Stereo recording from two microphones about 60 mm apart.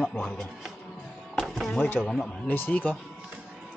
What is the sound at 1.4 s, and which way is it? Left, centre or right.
Music, centre.